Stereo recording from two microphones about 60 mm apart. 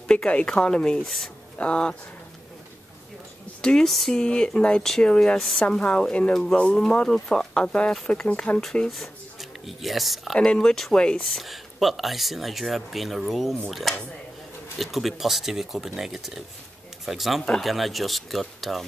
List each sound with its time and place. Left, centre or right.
0.1 s a woman's voice: centre
3.6 s speech: centre
7.6 s speech: centre
8.8 s speech: centre
10.4 s speech: centre
11.3 s speech: centre